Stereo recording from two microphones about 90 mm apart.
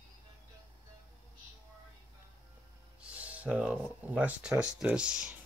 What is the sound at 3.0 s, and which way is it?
Speech, 15° right (ahead or behind).